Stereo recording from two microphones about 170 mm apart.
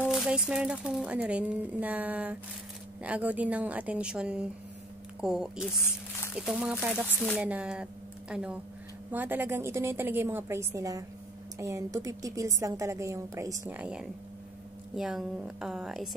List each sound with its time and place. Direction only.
0.1 s a woman's voice: 5° right (ahead or behind)
13.7 s a woman's voice: 5° right (ahead or behind)